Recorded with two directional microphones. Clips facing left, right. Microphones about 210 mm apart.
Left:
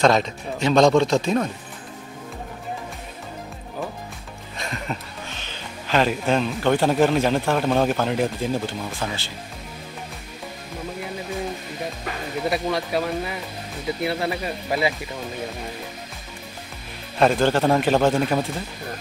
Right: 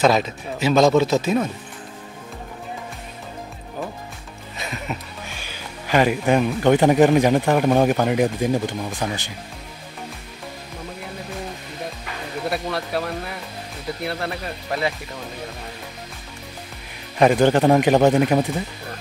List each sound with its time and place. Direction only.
0.0 s speech: 5° right (ahead or behind)
4.6 s speech: 5° right (ahead or behind)
12.4 s speech: centre (ahead or behind)
17.2 s a man's voice: 15° right (ahead or behind)